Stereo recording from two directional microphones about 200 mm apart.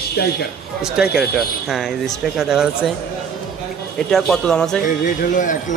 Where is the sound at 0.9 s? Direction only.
5° right (ahead or behind).